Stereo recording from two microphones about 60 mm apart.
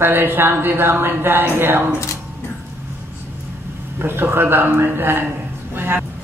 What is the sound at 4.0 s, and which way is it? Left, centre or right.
A man's voice, right.